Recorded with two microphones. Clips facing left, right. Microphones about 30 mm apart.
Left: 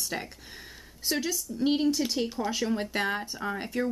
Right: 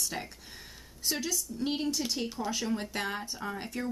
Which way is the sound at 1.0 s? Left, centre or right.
Centre.